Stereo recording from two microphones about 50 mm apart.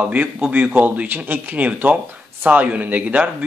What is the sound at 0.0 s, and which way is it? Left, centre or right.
A man's voice, right.